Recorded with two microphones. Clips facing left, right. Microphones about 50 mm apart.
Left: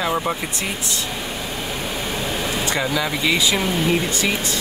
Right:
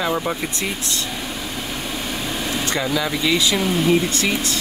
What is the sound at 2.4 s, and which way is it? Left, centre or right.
Speech, centre.